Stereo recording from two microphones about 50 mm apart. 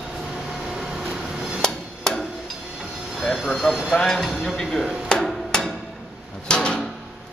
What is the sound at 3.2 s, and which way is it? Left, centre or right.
Train, centre.